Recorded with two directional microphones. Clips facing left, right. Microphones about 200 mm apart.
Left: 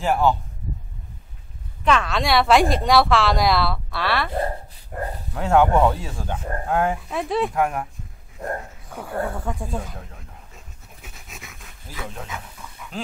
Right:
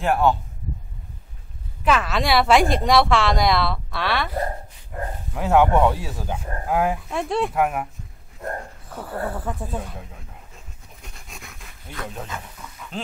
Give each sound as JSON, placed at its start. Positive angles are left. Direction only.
{"t": 0.0, "sound": "speech", "side_deg": 0}
{"t": 1.9, "sound": "speech", "side_deg": -5}
{"t": 5.3, "sound": "speech", "side_deg": -5}
{"t": 8.8, "sound": "snake", "side_deg": 0}